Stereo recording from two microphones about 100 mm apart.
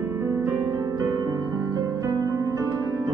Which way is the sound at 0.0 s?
25° right (ahead or behind).